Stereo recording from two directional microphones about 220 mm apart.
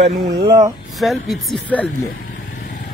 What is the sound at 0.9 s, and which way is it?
Speech, centre (ahead or behind).